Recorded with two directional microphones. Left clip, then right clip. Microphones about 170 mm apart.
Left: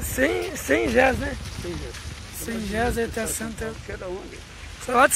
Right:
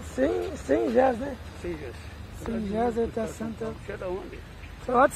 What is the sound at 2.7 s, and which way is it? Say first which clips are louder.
Speech: left 2 dB; 20° left (ahead or behind).